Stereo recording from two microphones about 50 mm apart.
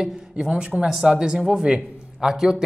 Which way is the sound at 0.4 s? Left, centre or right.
Centre.